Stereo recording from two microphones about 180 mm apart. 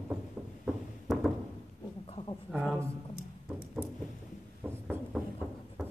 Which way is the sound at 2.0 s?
30° left (ahead or behind).